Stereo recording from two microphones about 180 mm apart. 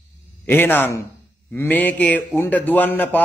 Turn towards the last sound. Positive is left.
turn(degrees=10)  # may be behind; listen again after turning